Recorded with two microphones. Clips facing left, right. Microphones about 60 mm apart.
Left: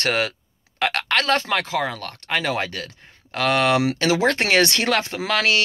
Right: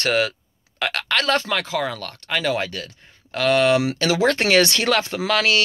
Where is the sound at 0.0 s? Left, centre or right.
Left.